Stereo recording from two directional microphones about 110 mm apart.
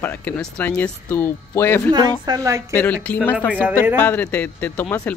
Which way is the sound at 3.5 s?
15° right (ahead or behind).